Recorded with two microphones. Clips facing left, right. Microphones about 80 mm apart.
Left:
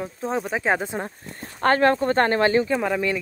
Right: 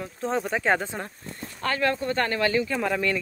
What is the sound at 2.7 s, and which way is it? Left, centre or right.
Speech, centre.